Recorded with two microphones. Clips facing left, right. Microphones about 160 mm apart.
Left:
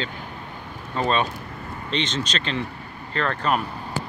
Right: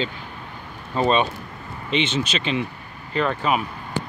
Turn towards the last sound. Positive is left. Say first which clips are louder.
# right 2 dB
turn(degrees=-5)  # may be behind; listen again after turning